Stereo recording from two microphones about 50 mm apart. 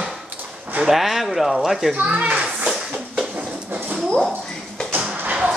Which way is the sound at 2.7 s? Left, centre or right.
Centre.